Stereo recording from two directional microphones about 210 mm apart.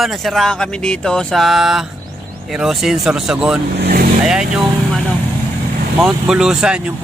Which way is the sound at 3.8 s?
45° right (ahead or behind).